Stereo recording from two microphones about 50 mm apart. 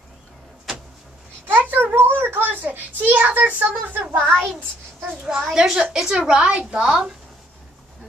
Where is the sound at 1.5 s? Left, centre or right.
Right.